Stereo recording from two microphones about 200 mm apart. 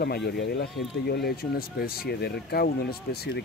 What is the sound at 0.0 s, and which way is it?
Speech, 55° left (ahead or behind).